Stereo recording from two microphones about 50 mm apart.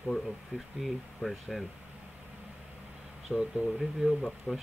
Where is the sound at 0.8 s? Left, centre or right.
Centre.